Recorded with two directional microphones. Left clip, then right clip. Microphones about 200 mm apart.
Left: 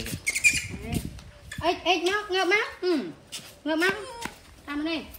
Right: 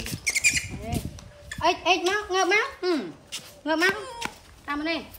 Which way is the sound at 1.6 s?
5° right (ahead or behind).